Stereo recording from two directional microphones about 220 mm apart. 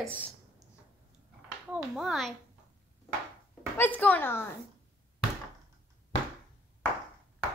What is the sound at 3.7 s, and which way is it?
Speech, 5° left (ahead or behind).